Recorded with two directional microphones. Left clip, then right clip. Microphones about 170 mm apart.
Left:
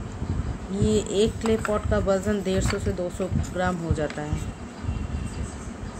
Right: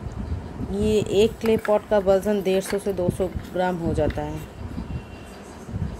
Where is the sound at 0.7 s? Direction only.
30° right (ahead or behind).